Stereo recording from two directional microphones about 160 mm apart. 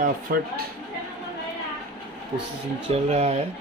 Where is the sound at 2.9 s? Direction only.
40° right (ahead or behind).